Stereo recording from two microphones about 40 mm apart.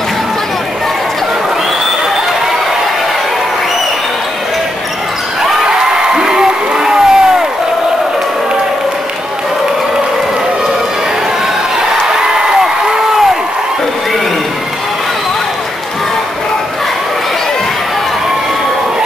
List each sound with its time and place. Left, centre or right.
5.8 s crowd: centre